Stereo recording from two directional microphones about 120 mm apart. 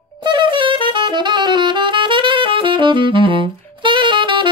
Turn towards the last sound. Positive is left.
turn(degrees=-40)  # may be behind; listen again after turning